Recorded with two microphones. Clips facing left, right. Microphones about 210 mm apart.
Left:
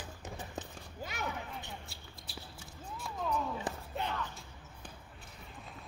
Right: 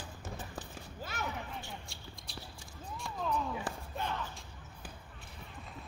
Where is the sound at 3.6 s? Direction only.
20° left (ahead or behind).